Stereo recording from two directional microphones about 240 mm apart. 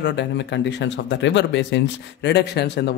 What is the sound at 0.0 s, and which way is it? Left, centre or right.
Speech, left.